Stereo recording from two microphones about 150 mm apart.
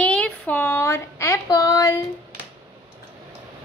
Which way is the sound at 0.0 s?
10° left (ahead or behind).